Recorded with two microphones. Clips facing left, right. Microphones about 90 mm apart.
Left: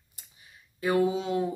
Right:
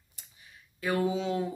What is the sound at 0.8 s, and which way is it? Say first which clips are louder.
Speech: left 3 dB; 15° left (ahead or behind).